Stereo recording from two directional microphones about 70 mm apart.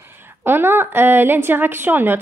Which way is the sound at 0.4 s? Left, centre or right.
Right.